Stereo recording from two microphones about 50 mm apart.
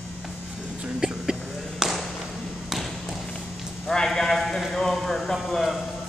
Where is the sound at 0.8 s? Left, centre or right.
Centre.